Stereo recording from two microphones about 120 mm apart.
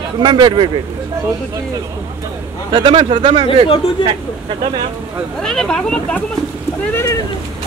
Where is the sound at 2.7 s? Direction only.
50° right (ahead or behind).